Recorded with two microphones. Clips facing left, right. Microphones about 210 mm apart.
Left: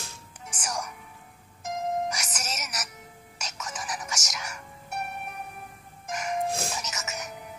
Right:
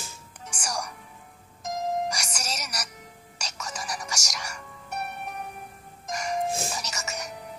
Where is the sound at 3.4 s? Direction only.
5° left (ahead or behind).